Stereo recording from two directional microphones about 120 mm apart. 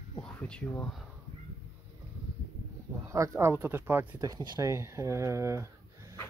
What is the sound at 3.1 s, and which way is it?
Speech, 25° right (ahead or behind).